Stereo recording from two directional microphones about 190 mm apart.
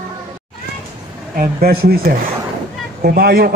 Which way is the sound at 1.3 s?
50° right (ahead or behind).